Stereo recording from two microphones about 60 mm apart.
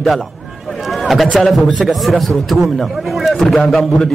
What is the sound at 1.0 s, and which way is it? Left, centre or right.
A man's voice, centre.